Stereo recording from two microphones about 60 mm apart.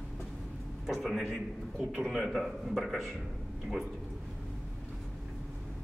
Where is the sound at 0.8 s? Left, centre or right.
Centre.